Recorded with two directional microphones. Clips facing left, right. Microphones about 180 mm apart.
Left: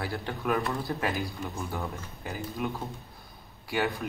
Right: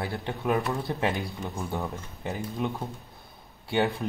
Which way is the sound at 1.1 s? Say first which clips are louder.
Right 1 dB; centre (ahead or behind).